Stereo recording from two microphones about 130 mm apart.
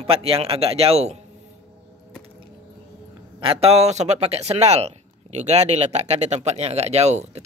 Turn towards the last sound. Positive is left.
turn(degrees=-60)  # may be behind; listen again after turning